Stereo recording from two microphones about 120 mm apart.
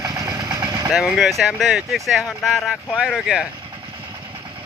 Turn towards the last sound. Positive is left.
turn(degrees=-5)  # may be behind; listen again after turning